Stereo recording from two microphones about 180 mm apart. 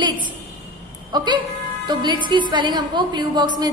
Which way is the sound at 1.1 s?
25° right (ahead or behind).